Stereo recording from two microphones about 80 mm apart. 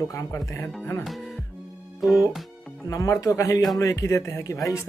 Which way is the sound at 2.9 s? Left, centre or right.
Left.